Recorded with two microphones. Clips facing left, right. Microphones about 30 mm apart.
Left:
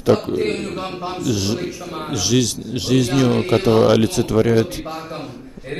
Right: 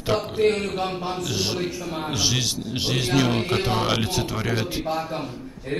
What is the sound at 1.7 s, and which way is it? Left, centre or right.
Speech, centre.